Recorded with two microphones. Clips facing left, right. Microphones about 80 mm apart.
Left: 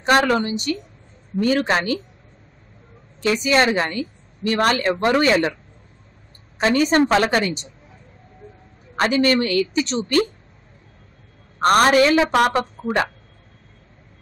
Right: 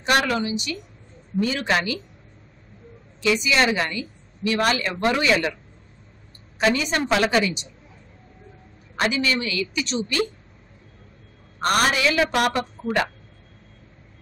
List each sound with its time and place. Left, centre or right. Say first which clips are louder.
0.0 s a woman's voice: left 4 dB; left
0.4 s a woman's voice: left 3 dB; left
3.2 s a woman's voice: left 3 dB; left
6.7 s speech: left 9 dB; left
8.9 s speech: left 5 dB; left
11.7 s a woman's voice: left 6 dB; left